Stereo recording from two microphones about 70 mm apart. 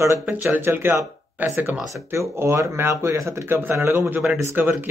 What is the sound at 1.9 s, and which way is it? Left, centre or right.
Speech, right.